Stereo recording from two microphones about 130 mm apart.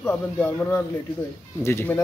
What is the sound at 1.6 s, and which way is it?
Speech, 20° left (ahead or behind).